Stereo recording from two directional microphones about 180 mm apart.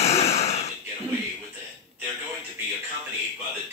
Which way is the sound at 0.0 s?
35° left (ahead or behind).